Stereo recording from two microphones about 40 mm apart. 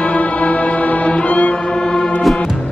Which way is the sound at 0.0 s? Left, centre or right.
Left.